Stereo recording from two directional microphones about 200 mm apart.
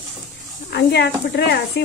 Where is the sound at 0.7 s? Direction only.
55° left (ahead or behind).